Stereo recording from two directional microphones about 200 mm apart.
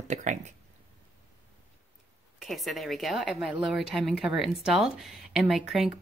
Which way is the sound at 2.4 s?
Centre (ahead or behind).